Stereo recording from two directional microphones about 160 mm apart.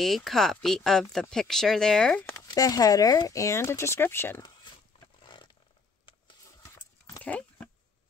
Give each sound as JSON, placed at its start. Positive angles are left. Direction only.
{"t": 0.0, "sound": "speech", "side_deg": 0}
{"t": 2.3, "sound": "speech", "side_deg": 25}
{"t": 5.2, "sound": "vehicle", "side_deg": 25}
{"t": 6.6, "sound": "dog", "side_deg": 15}